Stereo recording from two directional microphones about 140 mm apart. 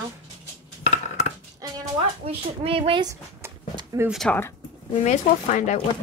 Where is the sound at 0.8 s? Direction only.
55° left (ahead or behind).